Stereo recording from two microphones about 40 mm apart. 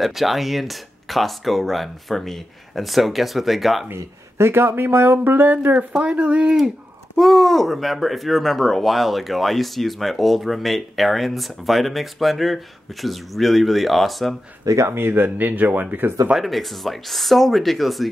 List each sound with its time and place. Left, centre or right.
0.0 s speech: centre
4.5 s speech: right
6.1 s speech: right
7.2 s speech: centre
14.9 s speech: right
16.3 s speech: centre